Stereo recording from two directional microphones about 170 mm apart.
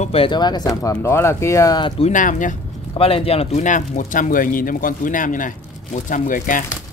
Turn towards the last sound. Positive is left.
turn(degrees=50)  # may be behind; listen again after turning